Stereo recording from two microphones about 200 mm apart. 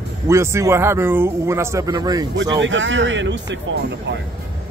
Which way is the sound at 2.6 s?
70° right (ahead or behind).